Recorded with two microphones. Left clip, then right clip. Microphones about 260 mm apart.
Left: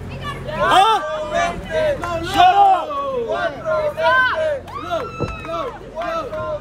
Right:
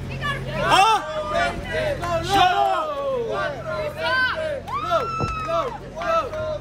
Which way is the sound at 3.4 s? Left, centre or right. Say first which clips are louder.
Left 7 dB; centre.